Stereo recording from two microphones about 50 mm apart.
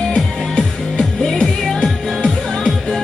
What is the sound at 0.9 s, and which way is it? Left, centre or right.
Music, centre.